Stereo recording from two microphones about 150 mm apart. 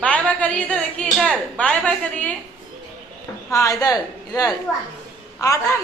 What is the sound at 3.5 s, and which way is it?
Speech, 20° left (ahead or behind).